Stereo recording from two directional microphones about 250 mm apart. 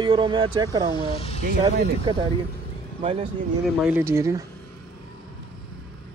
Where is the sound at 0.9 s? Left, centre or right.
Left.